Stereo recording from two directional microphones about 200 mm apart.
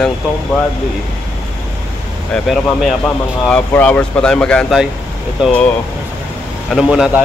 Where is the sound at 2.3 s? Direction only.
Centre (ahead or behind).